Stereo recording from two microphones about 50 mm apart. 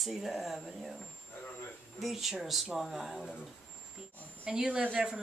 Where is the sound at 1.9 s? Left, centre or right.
Centre.